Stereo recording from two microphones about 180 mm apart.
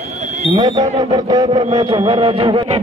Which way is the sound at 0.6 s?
20° right (ahead or behind).